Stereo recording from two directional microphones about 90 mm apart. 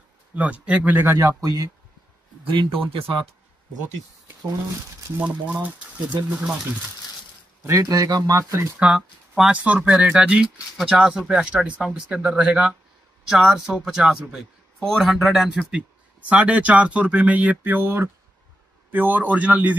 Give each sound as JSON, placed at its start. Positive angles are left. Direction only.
{"t": 0.3, "sound": "speech", "side_deg": -15}
{"t": 1.0, "sound": "speech", "side_deg": -35}
{"t": 2.4, "sound": "speech", "side_deg": -65}
{"t": 5.1, "sound": "speech", "side_deg": -15}
{"t": 7.6, "sound": "speech", "side_deg": -35}
{"t": 8.7, "sound": "speech", "side_deg": -10}
{"t": 14.8, "sound": "speech", "side_deg": 5}
{"t": 15.7, "sound": "speech", "side_deg": -15}